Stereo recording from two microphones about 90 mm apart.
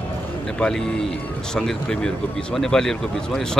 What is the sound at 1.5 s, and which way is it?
Speech, 10° left (ahead or behind).